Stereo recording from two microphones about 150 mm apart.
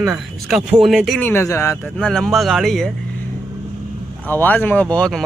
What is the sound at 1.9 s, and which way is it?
Speech, 5° left (ahead or behind).